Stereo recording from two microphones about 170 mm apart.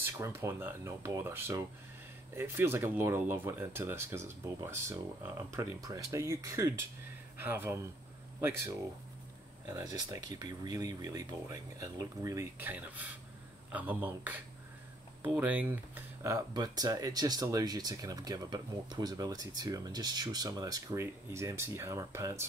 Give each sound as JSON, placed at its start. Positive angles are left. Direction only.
{"t": 0.0, "sound": "speech", "side_deg": -15}